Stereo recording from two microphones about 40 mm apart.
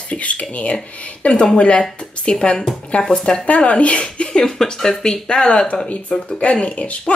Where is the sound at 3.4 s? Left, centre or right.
Left.